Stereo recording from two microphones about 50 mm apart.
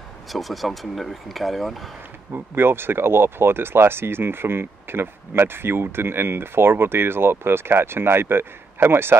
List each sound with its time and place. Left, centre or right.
0.3 s speech: centre
2.3 s speech: right